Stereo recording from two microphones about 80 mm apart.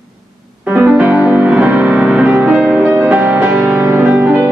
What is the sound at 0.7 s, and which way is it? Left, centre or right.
Music, centre.